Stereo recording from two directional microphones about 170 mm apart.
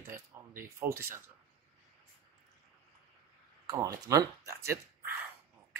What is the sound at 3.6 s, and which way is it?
Speech, 20° right (ahead or behind).